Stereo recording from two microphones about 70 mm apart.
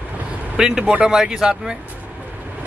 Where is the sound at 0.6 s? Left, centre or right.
Centre.